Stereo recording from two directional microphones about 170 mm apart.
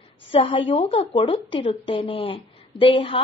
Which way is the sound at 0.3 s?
30° left (ahead or behind).